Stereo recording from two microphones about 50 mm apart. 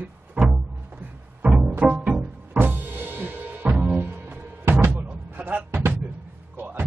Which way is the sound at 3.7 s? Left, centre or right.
Right.